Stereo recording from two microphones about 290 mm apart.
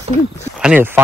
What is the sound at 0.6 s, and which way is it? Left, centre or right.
Speech, centre.